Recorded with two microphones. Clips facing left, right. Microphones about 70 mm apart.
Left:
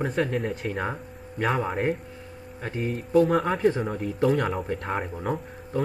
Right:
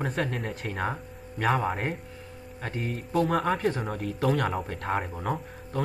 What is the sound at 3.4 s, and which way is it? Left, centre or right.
Speech, centre.